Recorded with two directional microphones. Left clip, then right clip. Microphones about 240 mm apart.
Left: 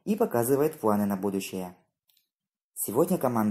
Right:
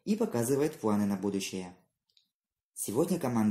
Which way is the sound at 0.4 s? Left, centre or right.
Left.